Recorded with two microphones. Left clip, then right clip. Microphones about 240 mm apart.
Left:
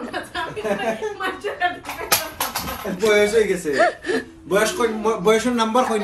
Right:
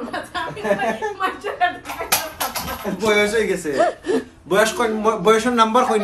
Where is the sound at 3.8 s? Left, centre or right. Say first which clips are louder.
Even; centre.